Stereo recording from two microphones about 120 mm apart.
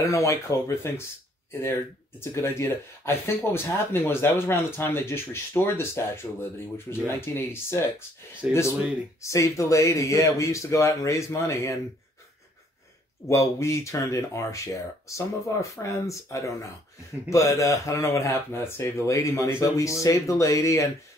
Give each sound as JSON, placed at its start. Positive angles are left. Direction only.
{"t": 0.0, "sound": "speech", "side_deg": 25}
{"t": 9.2, "sound": "speech", "side_deg": 25}
{"t": 13.3, "sound": "speech", "side_deg": 25}